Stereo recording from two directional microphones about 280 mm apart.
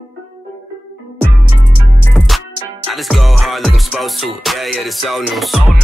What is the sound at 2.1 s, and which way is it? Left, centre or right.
Music, centre.